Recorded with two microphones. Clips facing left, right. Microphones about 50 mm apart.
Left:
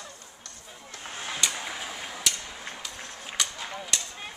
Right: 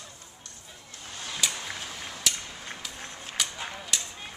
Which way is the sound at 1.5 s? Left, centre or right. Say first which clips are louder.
Left 2 dB; centre.